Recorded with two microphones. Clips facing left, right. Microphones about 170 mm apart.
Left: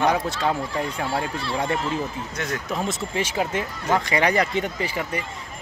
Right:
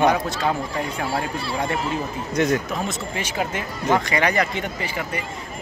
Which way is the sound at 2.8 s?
30° left (ahead or behind).